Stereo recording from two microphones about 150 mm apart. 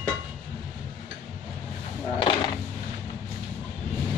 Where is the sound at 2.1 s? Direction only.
30° left (ahead or behind).